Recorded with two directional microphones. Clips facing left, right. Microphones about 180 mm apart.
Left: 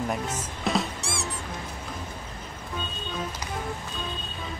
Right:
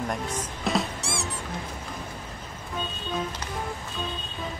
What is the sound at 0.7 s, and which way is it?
Music, centre (ahead or behind).